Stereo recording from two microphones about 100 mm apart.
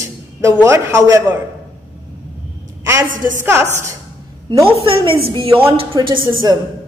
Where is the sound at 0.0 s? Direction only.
30° right (ahead or behind).